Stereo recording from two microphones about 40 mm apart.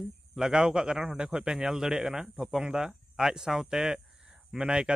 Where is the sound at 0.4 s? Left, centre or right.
Centre.